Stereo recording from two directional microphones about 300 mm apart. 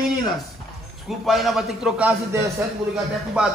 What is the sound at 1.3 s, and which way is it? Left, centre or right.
A man's voice, centre.